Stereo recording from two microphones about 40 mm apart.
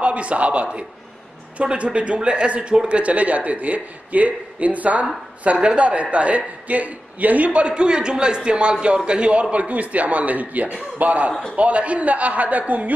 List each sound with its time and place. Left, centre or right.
0.0 s a man's voice: right